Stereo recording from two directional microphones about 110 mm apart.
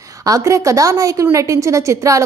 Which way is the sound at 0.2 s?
30° right (ahead or behind).